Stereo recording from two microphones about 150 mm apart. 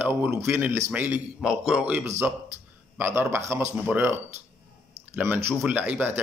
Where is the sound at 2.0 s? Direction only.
15° right (ahead or behind).